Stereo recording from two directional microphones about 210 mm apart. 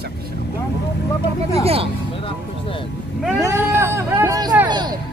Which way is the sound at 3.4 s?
10° right (ahead or behind).